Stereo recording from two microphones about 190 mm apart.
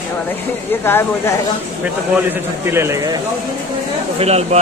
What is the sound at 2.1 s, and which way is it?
Speech, 15° right (ahead or behind).